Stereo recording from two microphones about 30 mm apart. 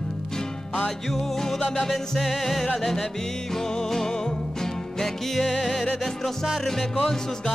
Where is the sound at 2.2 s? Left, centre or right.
Centre.